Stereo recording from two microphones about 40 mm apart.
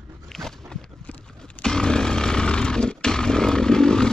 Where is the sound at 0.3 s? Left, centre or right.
Centre.